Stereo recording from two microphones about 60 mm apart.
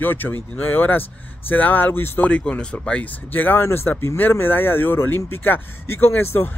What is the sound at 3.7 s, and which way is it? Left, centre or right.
Speech, left.